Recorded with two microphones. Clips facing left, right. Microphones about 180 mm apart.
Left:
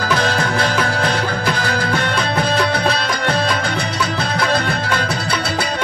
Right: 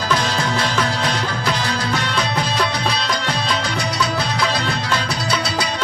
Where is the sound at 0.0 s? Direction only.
55° left (ahead or behind).